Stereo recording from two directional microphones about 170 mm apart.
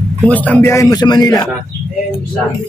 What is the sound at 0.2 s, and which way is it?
A man's voice, 10° left (ahead or behind).